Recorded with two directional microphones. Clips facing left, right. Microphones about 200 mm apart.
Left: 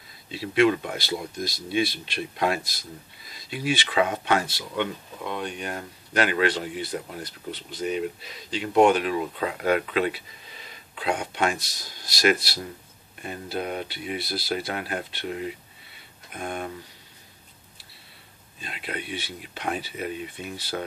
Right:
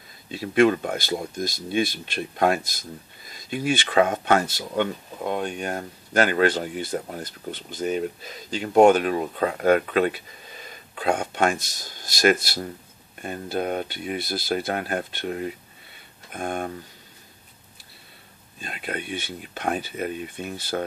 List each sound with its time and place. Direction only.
0.3 s speech: 45° right (ahead or behind)
18.6 s speech: 45° right (ahead or behind)